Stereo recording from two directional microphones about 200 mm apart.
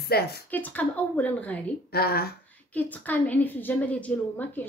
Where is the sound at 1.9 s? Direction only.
50° left (ahead or behind).